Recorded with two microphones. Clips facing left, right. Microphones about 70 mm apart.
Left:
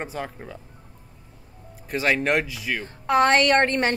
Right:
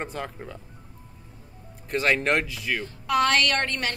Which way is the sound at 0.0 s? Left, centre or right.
Centre.